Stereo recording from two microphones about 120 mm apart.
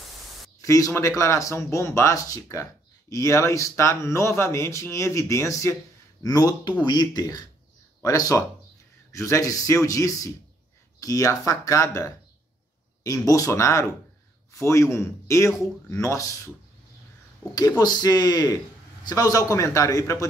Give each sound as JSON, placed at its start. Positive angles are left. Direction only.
{"t": 0.6, "sound": "speech", "side_deg": 25}
{"t": 17.6, "sound": "speech", "side_deg": 30}